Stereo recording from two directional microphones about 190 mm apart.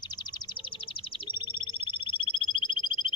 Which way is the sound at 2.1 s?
25° left (ahead or behind).